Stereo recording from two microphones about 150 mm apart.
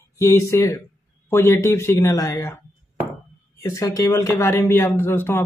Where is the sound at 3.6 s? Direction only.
20° left (ahead or behind).